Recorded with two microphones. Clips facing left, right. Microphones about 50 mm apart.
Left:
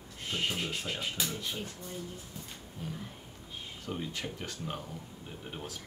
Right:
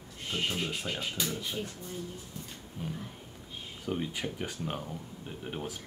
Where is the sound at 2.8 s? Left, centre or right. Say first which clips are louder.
Right 2 dB; centre.